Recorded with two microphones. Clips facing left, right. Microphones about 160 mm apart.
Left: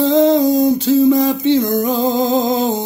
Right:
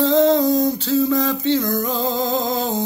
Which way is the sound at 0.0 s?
15° left (ahead or behind).